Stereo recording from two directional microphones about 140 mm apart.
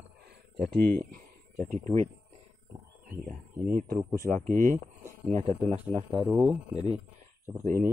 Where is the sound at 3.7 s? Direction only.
90° right.